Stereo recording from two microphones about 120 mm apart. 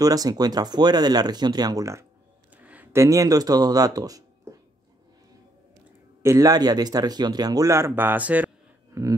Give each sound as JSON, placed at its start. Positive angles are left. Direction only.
{"t": 0.0, "sound": "speech", "side_deg": -30}
{"t": 2.5, "sound": "speech", "side_deg": -15}
{"t": 6.2, "sound": "speech", "side_deg": -25}
{"t": 9.0, "sound": "a sound", "side_deg": -25}